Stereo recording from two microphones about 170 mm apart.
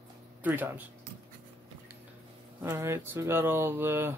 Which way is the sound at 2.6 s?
15° right (ahead or behind).